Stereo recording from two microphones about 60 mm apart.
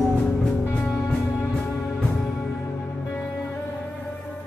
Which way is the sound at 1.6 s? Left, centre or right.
Left.